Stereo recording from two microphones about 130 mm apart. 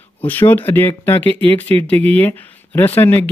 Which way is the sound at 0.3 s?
15° left (ahead or behind).